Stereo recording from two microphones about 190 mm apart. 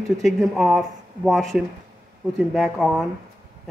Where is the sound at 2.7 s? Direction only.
Centre (ahead or behind).